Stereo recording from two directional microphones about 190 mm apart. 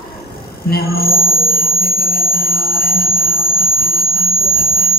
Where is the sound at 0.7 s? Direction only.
55° left (ahead or behind).